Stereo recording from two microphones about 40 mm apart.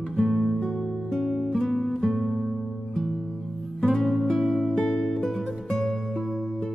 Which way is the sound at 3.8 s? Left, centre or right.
Centre.